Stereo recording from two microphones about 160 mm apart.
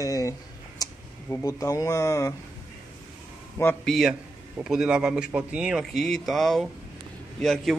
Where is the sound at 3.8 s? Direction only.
Centre (ahead or behind).